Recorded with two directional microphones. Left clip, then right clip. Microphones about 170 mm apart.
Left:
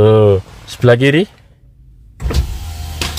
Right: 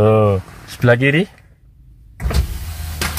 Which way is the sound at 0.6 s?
15° left (ahead or behind).